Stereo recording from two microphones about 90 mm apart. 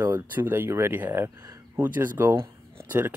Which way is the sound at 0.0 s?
20° right (ahead or behind).